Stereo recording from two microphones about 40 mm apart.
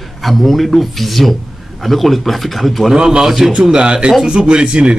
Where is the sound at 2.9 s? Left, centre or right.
Centre.